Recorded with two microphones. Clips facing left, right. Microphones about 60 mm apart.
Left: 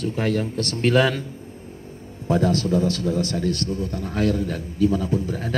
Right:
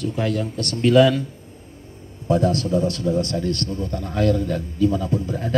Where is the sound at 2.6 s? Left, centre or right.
Right.